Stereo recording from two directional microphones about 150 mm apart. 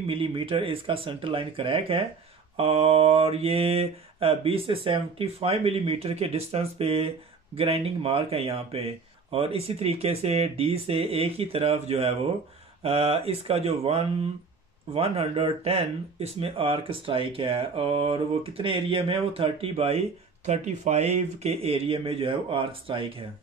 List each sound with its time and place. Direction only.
0.1 s speech: 35° right (ahead or behind)